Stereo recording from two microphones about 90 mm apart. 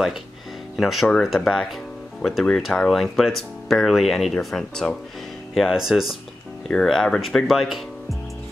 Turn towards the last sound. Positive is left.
turn(degrees=0)  # may be behind; listen again after turning